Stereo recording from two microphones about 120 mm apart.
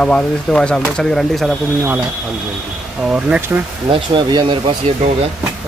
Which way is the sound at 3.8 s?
45° right (ahead or behind).